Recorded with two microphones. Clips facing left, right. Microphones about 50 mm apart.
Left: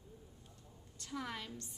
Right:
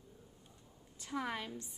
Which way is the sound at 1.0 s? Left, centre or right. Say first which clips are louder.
Right 4 dB; centre.